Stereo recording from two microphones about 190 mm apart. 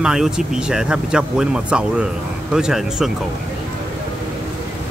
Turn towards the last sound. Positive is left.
turn(degrees=0)  # may be behind; listen again after turning